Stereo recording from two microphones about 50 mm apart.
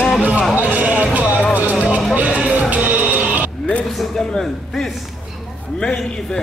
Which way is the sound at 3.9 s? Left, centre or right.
Centre.